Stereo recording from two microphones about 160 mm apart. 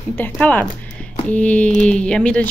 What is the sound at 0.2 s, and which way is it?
Speech, 10° left (ahead or behind).